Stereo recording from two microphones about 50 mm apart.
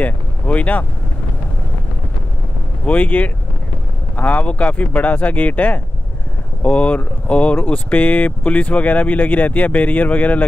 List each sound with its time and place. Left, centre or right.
0.0 s speech: left
2.8 s speech: left